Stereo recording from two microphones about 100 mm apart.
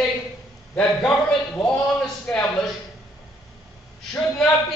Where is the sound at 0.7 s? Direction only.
10° left (ahead or behind).